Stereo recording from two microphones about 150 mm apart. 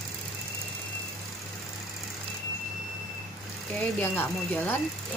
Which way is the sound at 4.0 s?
15° left (ahead or behind).